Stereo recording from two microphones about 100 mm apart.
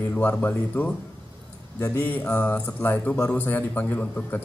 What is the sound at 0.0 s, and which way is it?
A man's voice, 20° left (ahead or behind).